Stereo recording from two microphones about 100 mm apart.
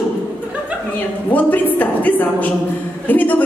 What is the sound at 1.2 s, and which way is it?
A woman's voice, 15° left (ahead or behind).